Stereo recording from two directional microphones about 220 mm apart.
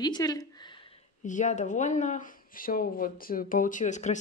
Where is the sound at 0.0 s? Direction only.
15° left (ahead or behind).